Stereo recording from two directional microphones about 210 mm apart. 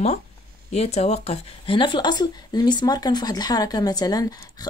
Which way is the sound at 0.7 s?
30° left (ahead or behind).